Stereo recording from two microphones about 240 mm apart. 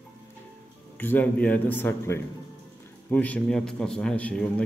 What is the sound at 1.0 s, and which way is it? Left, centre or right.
A man's voice, centre.